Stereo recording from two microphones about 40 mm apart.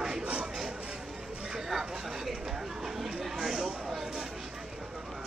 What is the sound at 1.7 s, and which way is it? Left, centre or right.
Speech, centre.